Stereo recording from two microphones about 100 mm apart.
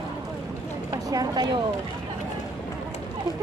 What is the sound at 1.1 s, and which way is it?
Speech, 45° right (ahead or behind).